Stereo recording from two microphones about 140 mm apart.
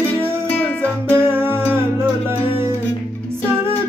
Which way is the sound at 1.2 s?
15° right (ahead or behind).